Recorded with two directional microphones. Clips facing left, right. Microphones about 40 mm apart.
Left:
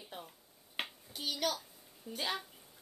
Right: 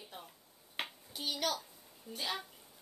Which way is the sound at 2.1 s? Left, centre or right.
Centre.